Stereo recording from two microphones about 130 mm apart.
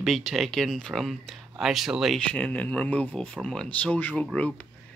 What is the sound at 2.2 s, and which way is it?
Speech, 10° left (ahead or behind).